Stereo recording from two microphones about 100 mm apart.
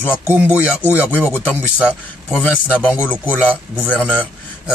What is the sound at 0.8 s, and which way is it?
Speech, 20° left (ahead or behind).